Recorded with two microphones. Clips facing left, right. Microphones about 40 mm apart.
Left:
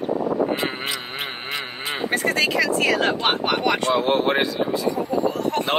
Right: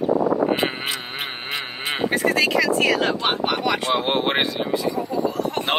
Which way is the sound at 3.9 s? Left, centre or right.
Right.